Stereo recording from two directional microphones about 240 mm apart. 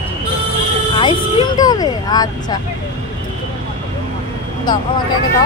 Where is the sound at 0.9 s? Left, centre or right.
Centre.